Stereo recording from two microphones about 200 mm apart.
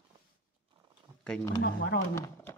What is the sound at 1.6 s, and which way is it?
Speech, 70° left (ahead or behind).